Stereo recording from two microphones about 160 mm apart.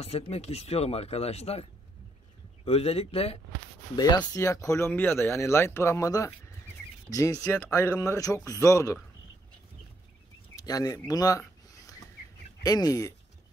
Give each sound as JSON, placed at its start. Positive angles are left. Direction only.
{"t": 0.0, "sound": "speech", "side_deg": 40}
{"t": 3.9, "sound": "speech", "side_deg": 25}
{"t": 10.5, "sound": "a sound", "side_deg": 25}
{"t": 12.6, "sound": "speech", "side_deg": 25}